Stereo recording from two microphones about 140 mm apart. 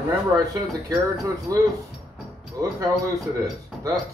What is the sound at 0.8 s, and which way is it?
Speech, 25° right (ahead or behind).